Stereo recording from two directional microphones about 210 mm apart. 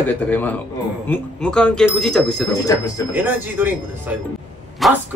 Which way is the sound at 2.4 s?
15° left (ahead or behind).